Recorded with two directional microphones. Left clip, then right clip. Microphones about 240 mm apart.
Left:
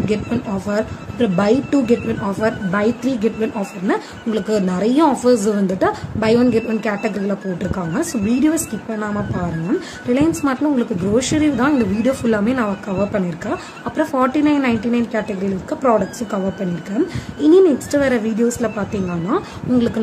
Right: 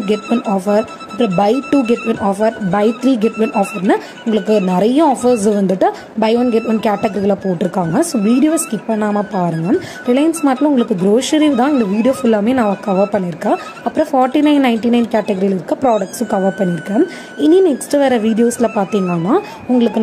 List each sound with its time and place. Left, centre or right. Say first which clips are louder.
0.0 s a woman's voice: right 5 dB; centre